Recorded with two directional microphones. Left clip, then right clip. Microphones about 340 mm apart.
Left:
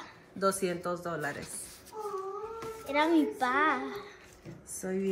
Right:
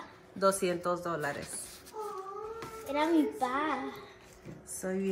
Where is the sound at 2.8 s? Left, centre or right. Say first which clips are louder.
Left 2 dB; centre.